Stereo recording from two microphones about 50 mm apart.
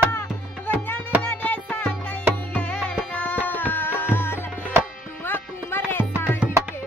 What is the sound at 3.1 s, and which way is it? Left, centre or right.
Music, left.